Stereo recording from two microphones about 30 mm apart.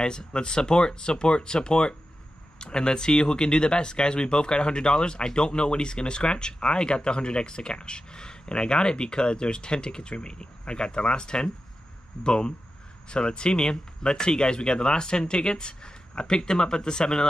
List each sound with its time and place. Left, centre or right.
0.0 s speech: left